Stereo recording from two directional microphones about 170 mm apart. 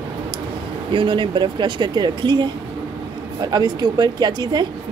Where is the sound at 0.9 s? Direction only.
30° right (ahead or behind).